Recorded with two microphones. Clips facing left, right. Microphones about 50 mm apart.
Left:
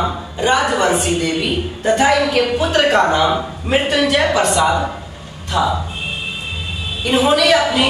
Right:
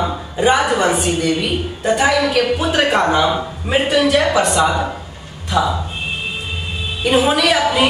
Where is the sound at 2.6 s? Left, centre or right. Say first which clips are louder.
Left 2 dB; centre.